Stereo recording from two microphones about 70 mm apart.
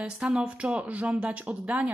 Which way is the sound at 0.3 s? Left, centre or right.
Centre.